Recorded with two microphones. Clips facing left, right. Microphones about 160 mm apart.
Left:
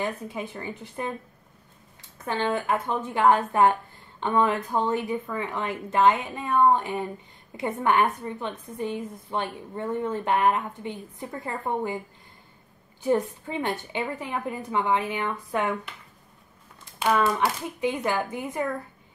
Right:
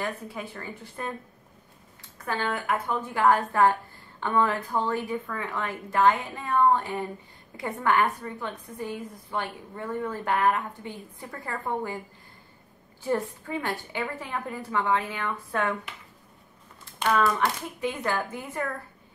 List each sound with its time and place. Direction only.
0.0 s a woman's voice: 20° left (ahead or behind)
2.2 s a woman's voice: 25° left (ahead or behind)
13.0 s a woman's voice: 20° left (ahead or behind)
17.4 s speech: 15° left (ahead or behind)